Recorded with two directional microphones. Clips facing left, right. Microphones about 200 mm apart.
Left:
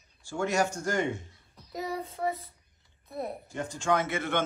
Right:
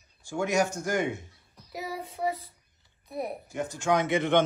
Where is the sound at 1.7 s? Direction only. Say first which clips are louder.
Left 2 dB; 5° right (ahead or behind).